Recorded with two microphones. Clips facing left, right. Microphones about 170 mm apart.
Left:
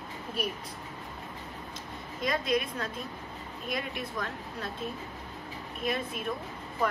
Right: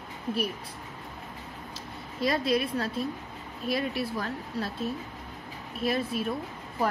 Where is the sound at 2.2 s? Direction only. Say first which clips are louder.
Right 3 dB; 35° right (ahead or behind).